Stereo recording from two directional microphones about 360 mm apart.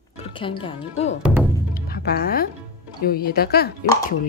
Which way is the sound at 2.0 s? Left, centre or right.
Left.